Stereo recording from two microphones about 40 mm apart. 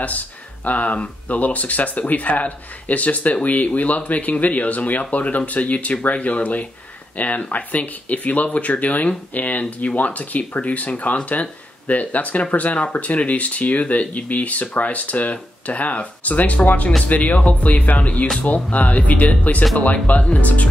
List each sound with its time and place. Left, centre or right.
0.7 s speech: left